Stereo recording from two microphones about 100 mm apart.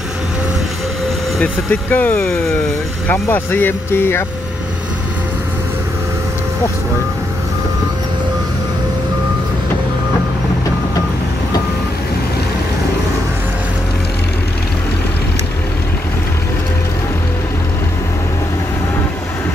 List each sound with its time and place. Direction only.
1.4 s speech: 15° left (ahead or behind)